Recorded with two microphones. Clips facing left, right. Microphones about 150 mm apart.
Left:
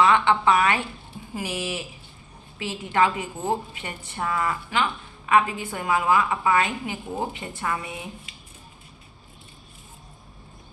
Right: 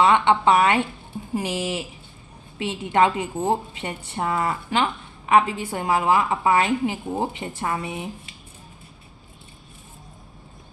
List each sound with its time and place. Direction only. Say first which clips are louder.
0.0 s a woman's voice: right 2 dB; 25° right (ahead or behind)